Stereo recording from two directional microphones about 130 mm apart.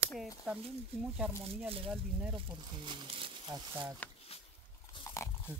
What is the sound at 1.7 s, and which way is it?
Speech, 45° right (ahead or behind).